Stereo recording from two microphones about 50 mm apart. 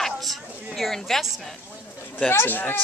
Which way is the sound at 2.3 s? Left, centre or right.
Left.